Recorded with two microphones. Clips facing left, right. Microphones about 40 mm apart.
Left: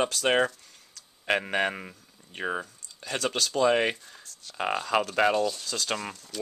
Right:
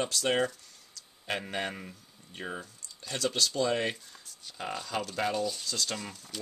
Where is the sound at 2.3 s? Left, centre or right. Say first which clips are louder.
Left 7 dB; left.